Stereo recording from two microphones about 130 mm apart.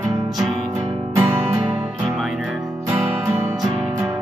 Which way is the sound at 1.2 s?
20° right (ahead or behind).